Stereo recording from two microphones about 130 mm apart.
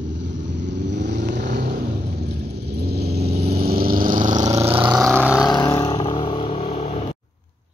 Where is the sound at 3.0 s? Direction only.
55° right (ahead or behind).